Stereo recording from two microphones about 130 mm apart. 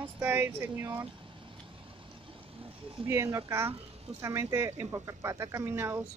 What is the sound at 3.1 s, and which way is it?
Speech, 20° right (ahead or behind).